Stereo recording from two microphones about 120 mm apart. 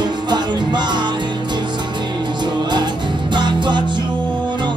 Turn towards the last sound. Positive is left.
turn(degrees=-40)  # may be behind; listen again after turning